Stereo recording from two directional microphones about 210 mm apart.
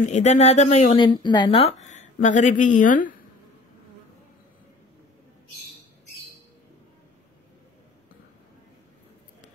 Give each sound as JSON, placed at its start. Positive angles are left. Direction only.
{"t": 0.1, "sound": "a woman's voice", "side_deg": 30}
{"t": 1.0, "sound": "a woman's voice", "side_deg": 20}